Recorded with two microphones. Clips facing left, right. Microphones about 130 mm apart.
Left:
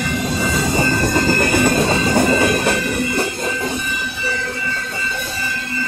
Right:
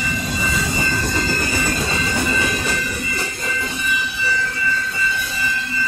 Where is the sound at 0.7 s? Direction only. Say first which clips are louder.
Left 5 dB; 55° left (ahead or behind).